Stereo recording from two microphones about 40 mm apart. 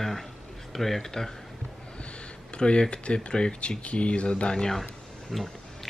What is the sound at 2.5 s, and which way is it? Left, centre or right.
Speech, left.